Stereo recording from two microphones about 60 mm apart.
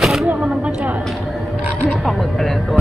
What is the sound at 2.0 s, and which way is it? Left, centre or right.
Music, centre.